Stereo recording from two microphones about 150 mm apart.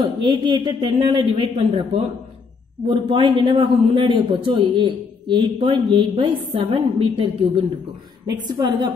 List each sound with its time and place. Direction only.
0.2 s a man's voice: 30° right (ahead or behind)